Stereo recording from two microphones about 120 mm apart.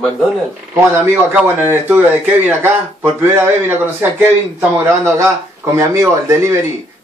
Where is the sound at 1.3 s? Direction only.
20° right (ahead or behind).